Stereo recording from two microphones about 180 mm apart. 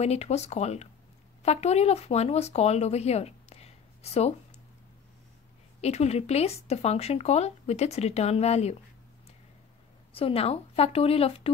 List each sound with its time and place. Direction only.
0.0 s speech: 35° left (ahead or behind)
5.8 s speech: 35° left (ahead or behind)
10.1 s speech: 30° left (ahead or behind)